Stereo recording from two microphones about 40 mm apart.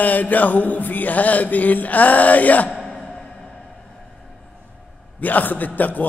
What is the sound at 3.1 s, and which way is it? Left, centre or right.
Music, centre.